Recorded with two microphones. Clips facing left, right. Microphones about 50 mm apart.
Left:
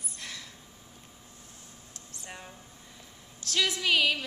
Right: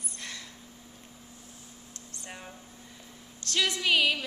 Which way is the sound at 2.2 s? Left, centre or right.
Centre.